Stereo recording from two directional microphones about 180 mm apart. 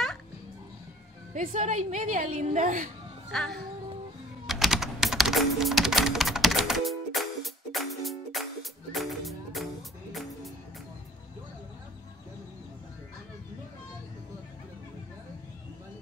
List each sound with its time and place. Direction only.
1.3 s a woman's voice: 45° right (ahead or behind)
3.3 s speech: centre (ahead or behind)
4.5 s typing: centre (ahead or behind)
8.9 s music: centre (ahead or behind)